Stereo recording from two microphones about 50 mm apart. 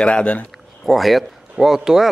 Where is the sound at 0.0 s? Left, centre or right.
Left.